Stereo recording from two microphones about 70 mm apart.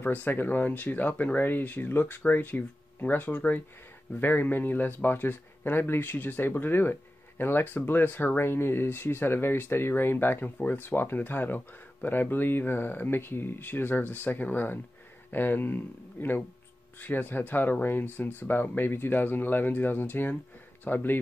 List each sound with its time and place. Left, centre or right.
0.0 s speech: left